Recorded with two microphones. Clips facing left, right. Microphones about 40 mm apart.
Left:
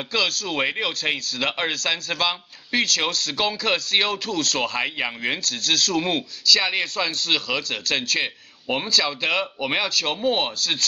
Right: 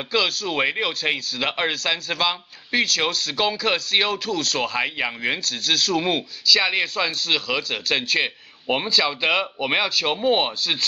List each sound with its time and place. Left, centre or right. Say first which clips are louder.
0.1 s speech: right 2 dB; centre